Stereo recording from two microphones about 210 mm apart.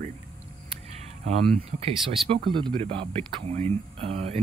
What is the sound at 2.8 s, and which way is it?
Speech, 25° right (ahead or behind).